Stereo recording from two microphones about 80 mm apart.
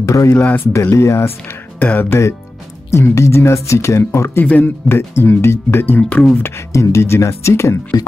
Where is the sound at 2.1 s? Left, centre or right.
Left.